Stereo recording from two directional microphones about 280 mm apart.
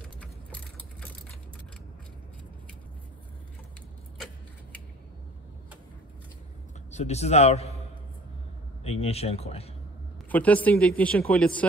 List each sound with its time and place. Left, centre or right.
6.9 s a man's voice: left
9.0 s speech: left
10.3 s speech: centre